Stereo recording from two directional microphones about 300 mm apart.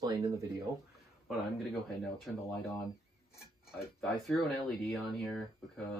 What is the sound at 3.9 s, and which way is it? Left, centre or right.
Speech, centre.